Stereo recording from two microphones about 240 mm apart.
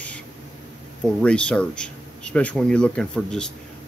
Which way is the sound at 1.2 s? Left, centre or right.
Centre.